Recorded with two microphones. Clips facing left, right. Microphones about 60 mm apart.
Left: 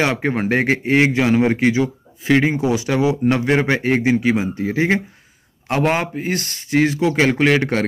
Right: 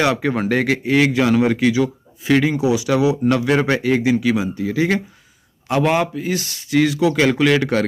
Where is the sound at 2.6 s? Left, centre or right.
Left.